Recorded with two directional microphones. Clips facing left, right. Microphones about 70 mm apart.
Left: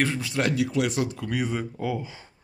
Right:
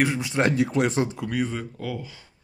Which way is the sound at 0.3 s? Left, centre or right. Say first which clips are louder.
Right 3 dB; right.